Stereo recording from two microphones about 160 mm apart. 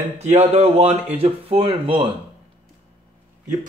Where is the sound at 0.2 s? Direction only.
40° right (ahead or behind).